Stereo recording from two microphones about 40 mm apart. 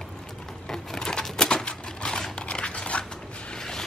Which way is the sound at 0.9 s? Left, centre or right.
Centre.